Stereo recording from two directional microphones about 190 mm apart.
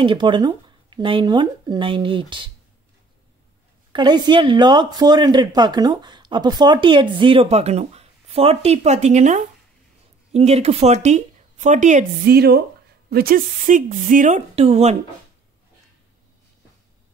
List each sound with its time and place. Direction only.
0.0 s a woman's voice: 25° right (ahead or behind)
3.9 s a woman's voice: 25° right (ahead or behind); by 12.4 s 40° right (ahead or behind)
12.4 s speech: 55° right (ahead or behind); by 15.0 s 35° right (ahead or behind)